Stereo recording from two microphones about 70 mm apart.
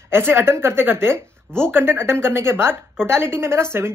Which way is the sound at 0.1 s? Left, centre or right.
Right.